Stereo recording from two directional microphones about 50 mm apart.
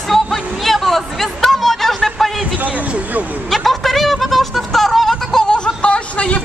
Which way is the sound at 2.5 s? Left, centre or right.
Right.